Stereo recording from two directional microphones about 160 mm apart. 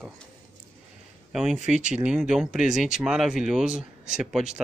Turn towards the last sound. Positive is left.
turn(degrees=-5)  # may be behind; listen again after turning